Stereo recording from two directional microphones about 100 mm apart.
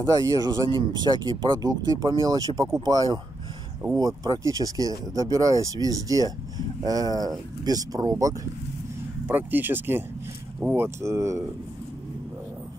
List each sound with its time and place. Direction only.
0.0 s speech: 35° right (ahead or behind)
9.3 s speech: 20° right (ahead or behind)